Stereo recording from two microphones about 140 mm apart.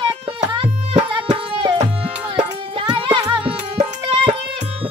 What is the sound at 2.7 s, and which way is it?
Music, 40° right (ahead or behind).